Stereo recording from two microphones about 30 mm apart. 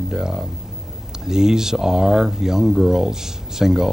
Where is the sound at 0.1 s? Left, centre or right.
Centre.